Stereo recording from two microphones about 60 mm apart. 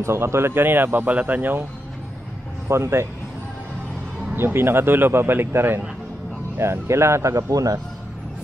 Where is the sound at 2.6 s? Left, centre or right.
Right.